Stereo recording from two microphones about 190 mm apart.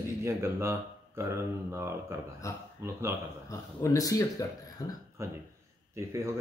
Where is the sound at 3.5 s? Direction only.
15° left (ahead or behind).